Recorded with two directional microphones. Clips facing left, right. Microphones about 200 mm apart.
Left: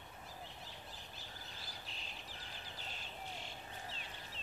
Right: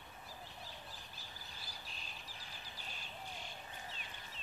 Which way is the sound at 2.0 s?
25° left (ahead or behind).